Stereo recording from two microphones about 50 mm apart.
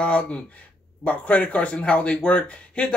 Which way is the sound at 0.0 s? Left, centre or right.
Left.